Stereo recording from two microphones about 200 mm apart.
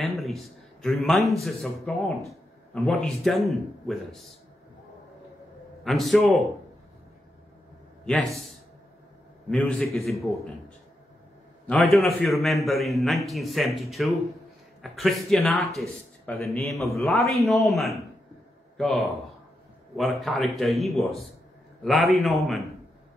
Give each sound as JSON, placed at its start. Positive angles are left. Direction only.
{"t": 0.0, "sound": "a sound", "side_deg": 0}
{"t": 0.8, "sound": "a man's voice", "side_deg": 0}
{"t": 5.9, "sound": "a man's voice", "side_deg": 0}
{"t": 8.0, "sound": "a man's voice", "side_deg": 5}
{"t": 9.5, "sound": "a man's voice", "side_deg": 5}
{"t": 11.6, "sound": "a man's voice", "side_deg": 0}